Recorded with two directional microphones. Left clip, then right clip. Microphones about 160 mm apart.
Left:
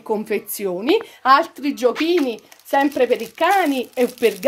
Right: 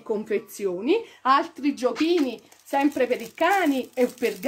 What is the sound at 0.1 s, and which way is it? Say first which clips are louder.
A woman's voice: left 4 dB; 60° left (ahead or behind).